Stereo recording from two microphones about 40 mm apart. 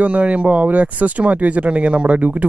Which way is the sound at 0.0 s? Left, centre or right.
Right.